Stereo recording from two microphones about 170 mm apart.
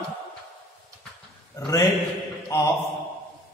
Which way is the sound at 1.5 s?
20° left (ahead or behind).